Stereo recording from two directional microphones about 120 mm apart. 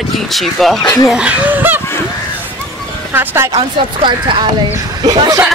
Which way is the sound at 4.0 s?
45° right (ahead or behind).